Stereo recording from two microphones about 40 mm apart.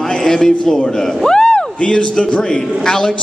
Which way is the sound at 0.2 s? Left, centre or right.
Centre.